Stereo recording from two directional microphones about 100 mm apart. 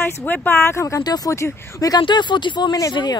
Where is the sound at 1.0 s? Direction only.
40° left (ahead or behind).